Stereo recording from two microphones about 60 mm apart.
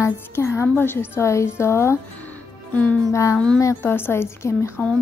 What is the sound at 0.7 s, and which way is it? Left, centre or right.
A woman's voice, left.